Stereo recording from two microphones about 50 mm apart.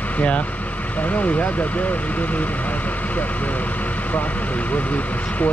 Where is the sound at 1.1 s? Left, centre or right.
Left.